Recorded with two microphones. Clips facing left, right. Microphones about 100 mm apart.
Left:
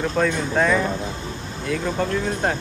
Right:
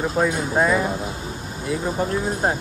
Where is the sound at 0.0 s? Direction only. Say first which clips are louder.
Even; 10° right (ahead or behind).